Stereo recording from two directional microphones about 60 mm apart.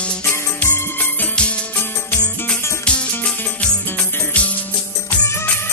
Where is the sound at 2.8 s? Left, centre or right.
Centre.